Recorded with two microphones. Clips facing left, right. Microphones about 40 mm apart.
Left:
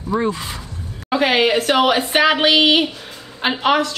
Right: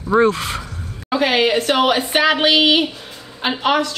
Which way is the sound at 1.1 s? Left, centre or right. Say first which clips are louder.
Even; centre.